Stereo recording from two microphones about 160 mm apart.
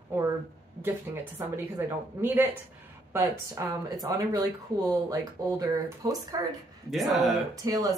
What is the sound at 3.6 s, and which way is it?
Speech, 20° right (ahead or behind).